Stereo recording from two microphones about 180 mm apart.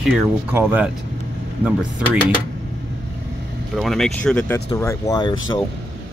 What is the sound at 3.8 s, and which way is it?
Speech, centre (ahead or behind).